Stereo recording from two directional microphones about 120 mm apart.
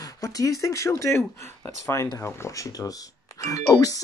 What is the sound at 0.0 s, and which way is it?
Speech, 30° left (ahead or behind).